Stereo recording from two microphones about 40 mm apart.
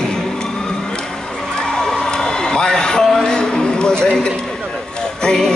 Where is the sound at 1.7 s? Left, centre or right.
Centre.